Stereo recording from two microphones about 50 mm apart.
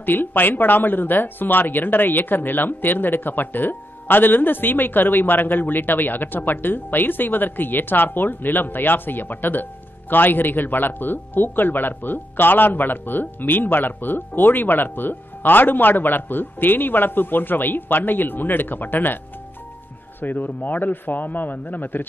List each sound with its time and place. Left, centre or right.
0.0 s speech: left
20.2 s speech: left